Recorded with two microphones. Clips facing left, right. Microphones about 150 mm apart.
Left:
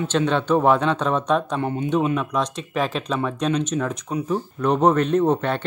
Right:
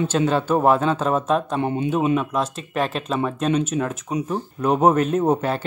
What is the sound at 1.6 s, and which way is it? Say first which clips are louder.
Speech: right 2 dB; 20° right (ahead or behind).